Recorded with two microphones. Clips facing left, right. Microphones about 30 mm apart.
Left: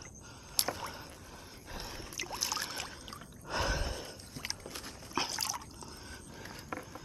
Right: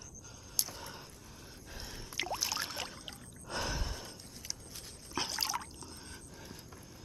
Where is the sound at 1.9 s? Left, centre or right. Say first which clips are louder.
Left 3 dB; centre.